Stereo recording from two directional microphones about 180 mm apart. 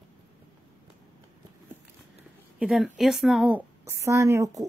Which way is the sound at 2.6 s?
Centre (ahead or behind).